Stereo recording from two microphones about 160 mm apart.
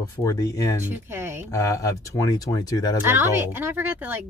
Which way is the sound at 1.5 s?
20° left (ahead or behind).